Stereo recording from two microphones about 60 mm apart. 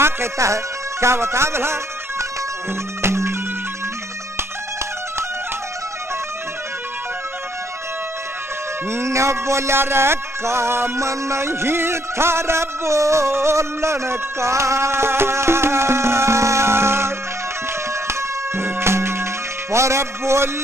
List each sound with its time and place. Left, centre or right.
0.0 s speech: right
3.0 s music: right
8.9 s music: right